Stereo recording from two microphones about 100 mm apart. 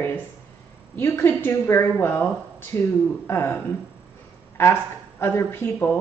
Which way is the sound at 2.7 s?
30° left (ahead or behind).